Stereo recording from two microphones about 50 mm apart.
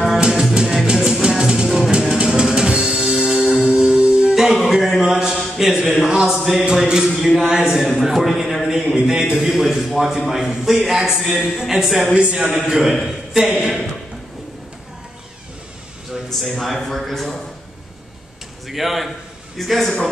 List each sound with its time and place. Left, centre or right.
0.4 s music: centre
5.0 s a sound: centre
6.0 s a man's voice: centre
16.3 s a man's voice: centre
18.7 s a man's voice: centre